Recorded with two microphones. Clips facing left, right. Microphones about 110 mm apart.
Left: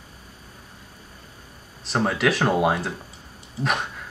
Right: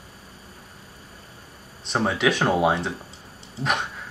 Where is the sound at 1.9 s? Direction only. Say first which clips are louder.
Even; centre (ahead or behind).